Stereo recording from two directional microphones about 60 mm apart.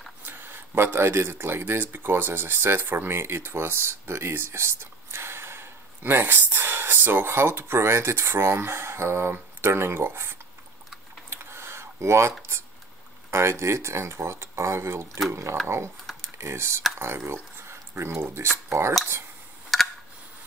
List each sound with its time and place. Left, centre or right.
0.2 s speech: right
11.2 s a sound: right
13.3 s speech: right
18.7 s cutlery: right